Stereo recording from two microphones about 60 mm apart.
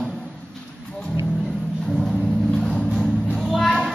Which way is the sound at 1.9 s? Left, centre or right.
Centre.